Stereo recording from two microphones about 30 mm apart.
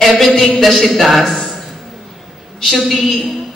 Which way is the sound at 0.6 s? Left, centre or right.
Centre.